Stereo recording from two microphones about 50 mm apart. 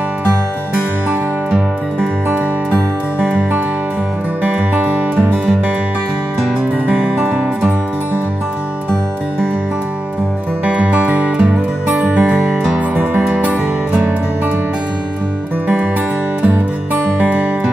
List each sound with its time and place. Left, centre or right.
2.2 s music: right
6.9 s music: right
10.6 s music: right
13.4 s music: right
16.4 s music: right